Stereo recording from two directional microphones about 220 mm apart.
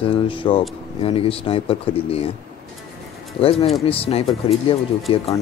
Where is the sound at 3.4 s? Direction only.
25° left (ahead or behind).